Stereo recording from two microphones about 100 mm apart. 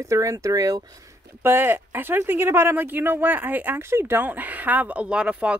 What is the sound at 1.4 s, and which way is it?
Speech, 25° right (ahead or behind).